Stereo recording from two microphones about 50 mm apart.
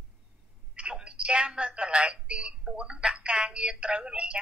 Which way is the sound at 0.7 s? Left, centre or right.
Centre.